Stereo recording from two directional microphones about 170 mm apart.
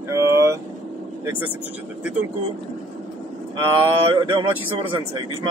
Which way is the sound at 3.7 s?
30° right (ahead or behind).